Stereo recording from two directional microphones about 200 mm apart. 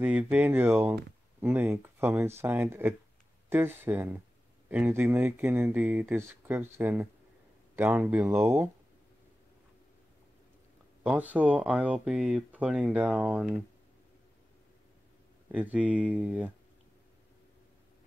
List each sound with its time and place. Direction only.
0.0 s speech: 5° right (ahead or behind)
11.1 s speech: 5° right (ahead or behind)
15.4 s speech: 5° right (ahead or behind)